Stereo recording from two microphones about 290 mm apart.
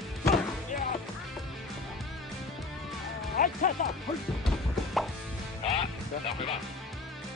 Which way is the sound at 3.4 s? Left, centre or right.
Left.